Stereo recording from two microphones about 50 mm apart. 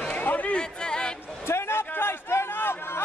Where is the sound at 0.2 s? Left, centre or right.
Left.